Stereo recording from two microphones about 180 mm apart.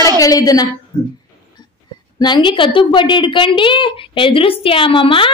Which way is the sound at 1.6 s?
25° left (ahead or behind).